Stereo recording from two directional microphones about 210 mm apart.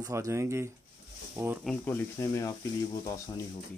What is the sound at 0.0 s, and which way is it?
Speech, 15° right (ahead or behind).